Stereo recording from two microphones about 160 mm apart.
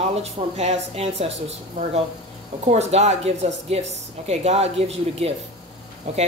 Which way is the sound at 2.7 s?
45° right (ahead or behind).